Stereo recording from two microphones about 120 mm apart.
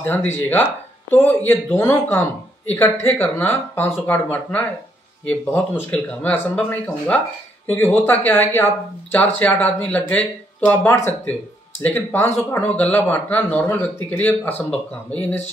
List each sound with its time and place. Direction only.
0.0 s speech: 15° left (ahead or behind)
5.9 s speech: 10° left (ahead or behind)